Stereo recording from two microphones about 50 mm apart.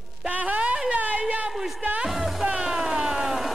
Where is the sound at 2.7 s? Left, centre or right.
Centre.